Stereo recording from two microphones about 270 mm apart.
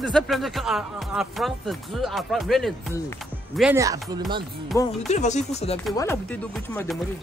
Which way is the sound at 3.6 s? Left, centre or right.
Centre.